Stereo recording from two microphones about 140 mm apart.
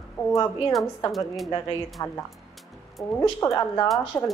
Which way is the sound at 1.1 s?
Centre (ahead or behind).